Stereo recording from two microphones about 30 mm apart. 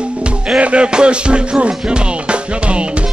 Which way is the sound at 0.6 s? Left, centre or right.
Right.